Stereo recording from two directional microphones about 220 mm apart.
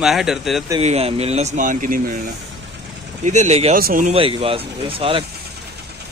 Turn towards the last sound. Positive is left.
turn(degrees=-25)  # may be behind; listen again after turning